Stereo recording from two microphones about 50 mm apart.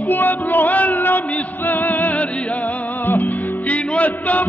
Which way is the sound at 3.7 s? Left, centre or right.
Left.